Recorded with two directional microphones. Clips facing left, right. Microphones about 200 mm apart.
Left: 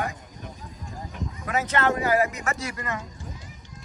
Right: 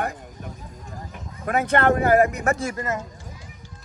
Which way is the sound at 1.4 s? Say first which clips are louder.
Right 5 dB; 55° right (ahead or behind).